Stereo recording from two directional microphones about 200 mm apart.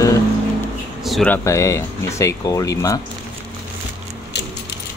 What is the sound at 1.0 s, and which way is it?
Speech, centre (ahead or behind).